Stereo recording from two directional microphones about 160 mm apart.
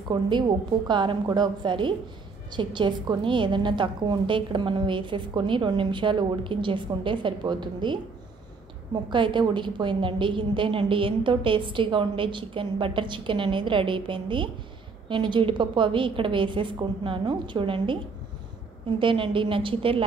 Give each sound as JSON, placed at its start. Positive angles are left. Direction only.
{"t": 0.1, "sound": "a woman's voice", "side_deg": -30}
{"t": 9.1, "sound": "a woman's voice", "side_deg": -30}